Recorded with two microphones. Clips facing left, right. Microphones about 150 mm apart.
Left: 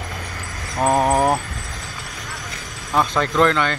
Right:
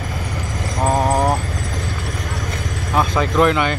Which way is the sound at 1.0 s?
5° left (ahead or behind).